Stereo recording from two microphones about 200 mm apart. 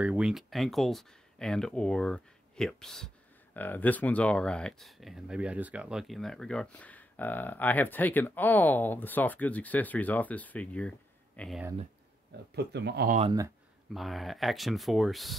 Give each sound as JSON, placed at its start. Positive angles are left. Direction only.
{"t": 0.0, "sound": "speech", "side_deg": -5}
{"t": 12.5, "sound": "speech", "side_deg": -55}
{"t": 13.2, "sound": "speech", "side_deg": -20}
{"t": 13.9, "sound": "speech", "side_deg": 0}